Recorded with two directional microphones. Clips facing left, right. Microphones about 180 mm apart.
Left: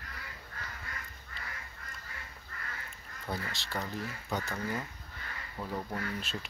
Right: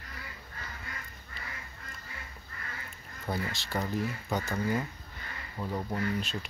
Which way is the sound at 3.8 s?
20° right (ahead or behind).